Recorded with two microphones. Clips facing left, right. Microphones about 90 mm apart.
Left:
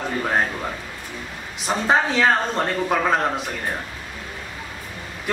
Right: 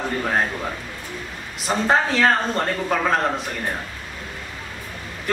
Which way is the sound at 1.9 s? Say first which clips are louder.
Even; 5° left (ahead or behind).